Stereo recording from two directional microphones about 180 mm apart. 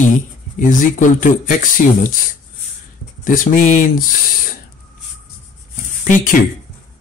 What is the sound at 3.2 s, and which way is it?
Speech, 50° left (ahead or behind).